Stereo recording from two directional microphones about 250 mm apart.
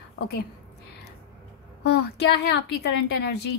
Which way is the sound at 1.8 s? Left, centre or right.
Left.